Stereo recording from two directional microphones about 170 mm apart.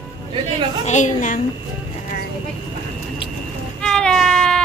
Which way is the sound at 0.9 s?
45° left (ahead or behind).